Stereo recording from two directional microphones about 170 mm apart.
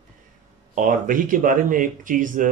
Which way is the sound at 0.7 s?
50° right (ahead or behind).